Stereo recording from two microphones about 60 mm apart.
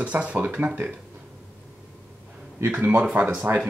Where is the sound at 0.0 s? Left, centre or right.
Right.